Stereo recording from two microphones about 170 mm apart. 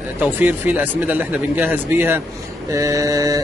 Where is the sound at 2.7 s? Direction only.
20° right (ahead or behind).